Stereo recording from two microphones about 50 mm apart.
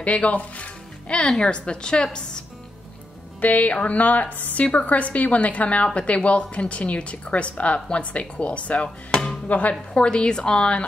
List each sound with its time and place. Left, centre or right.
0.0 s a woman's voice: left
3.3 s music: left
4.6 s speech: left
8.8 s speech: centre
9.5 s speech: left